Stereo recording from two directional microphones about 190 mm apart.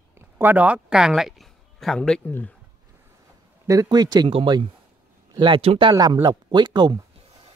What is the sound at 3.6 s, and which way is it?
Speech, 20° right (ahead or behind).